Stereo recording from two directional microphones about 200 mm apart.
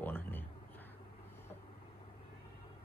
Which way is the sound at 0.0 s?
10° left (ahead or behind).